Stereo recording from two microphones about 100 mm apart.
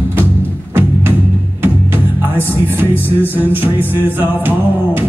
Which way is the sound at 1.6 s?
25° right (ahead or behind).